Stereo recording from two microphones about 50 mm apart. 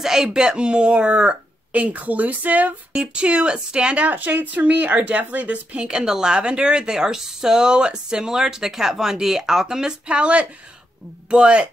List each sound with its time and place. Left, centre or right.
0.0 s speech: centre; by 2.7 s right
2.9 s speech: right
5.9 s speech: centre
10.0 s speech: right